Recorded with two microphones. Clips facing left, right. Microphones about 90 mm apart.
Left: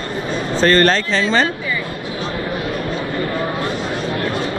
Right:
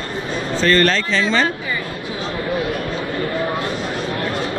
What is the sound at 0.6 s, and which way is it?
Speech, 35° left (ahead or behind).